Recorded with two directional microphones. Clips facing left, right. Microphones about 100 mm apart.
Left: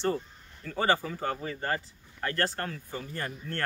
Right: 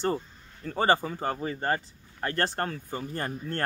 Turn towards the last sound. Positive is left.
turn(degrees=-40)  # may be behind; listen again after turning